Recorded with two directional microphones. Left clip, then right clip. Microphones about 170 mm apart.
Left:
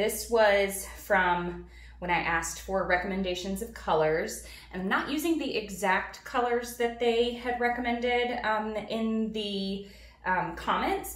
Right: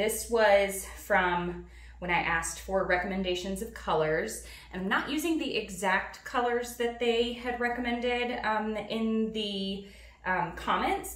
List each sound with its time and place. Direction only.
0.0 s a woman's voice: 5° right (ahead or behind)